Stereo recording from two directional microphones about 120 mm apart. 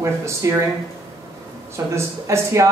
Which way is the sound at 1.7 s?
20° right (ahead or behind).